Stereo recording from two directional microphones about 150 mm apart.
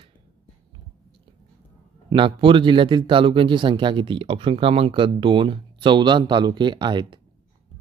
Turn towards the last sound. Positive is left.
turn(degrees=-30)  # may be behind; listen again after turning